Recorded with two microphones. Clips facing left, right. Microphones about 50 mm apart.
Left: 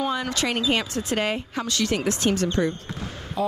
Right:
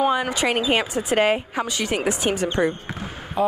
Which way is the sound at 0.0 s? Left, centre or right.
Centre.